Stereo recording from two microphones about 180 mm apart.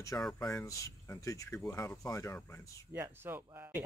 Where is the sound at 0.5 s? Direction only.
15° left (ahead or behind).